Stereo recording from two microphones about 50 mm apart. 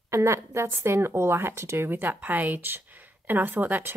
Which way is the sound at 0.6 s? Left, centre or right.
Right.